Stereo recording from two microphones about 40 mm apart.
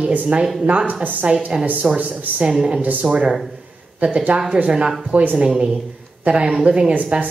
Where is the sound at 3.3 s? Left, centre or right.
Centre.